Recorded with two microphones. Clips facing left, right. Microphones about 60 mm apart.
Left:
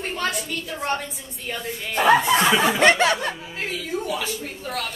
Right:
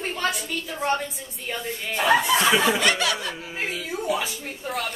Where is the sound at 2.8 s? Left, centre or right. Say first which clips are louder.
Left 6 dB; left.